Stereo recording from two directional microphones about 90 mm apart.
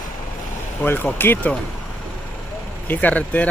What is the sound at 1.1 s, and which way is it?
Speech, 20° left (ahead or behind).